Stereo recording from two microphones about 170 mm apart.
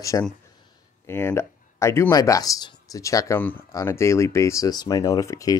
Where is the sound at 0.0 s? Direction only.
20° left (ahead or behind).